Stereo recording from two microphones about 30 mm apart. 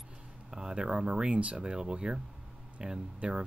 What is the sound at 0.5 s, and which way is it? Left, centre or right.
Speech, right.